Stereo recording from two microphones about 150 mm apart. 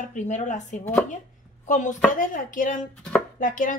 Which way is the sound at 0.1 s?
55° left (ahead or behind).